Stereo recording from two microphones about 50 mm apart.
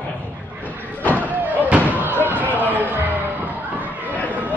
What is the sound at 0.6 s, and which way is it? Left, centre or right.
Cupboard open or close, left.